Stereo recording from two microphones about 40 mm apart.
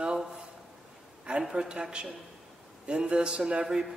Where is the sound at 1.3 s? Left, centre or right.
Right.